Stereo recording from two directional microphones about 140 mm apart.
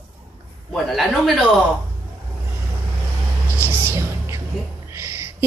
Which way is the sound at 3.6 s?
15° right (ahead or behind).